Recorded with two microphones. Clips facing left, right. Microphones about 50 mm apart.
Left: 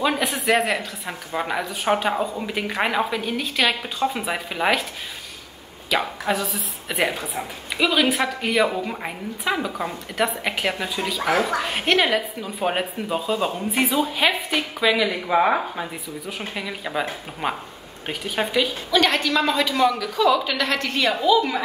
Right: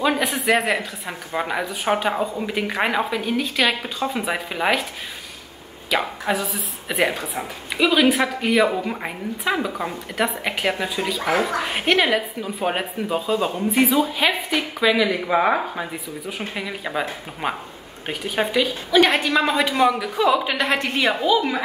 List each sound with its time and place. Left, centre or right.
0.0 s speech: centre
5.9 s a man's voice: centre
18.9 s a woman's voice: centre